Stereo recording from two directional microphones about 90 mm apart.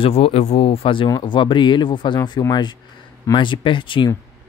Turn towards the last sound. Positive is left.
turn(degrees=65)  # may be behind; listen again after turning